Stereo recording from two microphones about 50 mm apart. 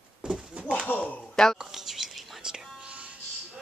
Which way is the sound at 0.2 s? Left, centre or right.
Centre.